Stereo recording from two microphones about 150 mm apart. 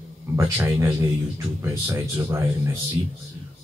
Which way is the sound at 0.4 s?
20° right (ahead or behind).